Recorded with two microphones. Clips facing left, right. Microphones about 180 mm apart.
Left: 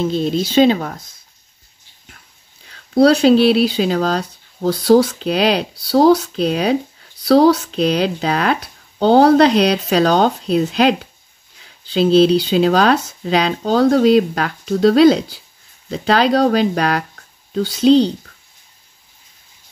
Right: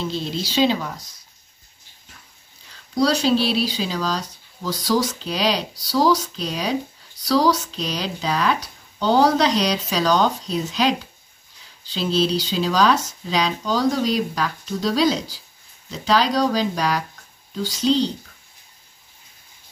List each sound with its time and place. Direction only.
0.0 s speech: 50° left (ahead or behind)
2.7 s speech: 60° left (ahead or behind)